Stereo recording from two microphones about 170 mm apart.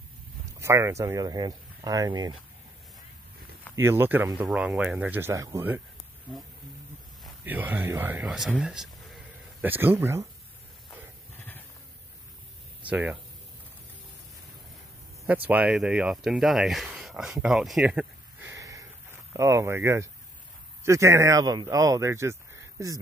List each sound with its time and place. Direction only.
0.6 s speech: 15° right (ahead or behind)
3.7 s speech: 15° right (ahead or behind)
7.4 s speech: 10° right (ahead or behind)
11.3 s sheep: 10° left (ahead or behind)
12.8 s speech: 10° right (ahead or behind)
15.2 s speech: 10° right (ahead or behind)
18.5 s a sound: 20° right (ahead or behind)
19.3 s speech: 15° right (ahead or behind)